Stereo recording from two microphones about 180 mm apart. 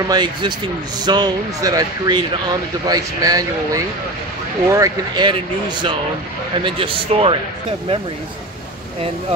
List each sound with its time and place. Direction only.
0.1 s speech: 25° right (ahead or behind)